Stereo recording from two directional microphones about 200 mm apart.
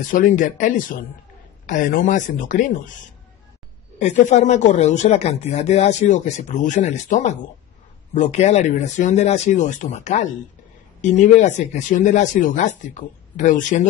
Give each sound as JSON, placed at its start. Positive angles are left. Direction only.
{"t": 0.0, "sound": "speech", "side_deg": 40}
{"t": 4.0, "sound": "speech", "side_deg": 35}